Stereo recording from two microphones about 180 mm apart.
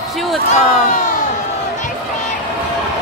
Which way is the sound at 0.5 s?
45° left (ahead or behind).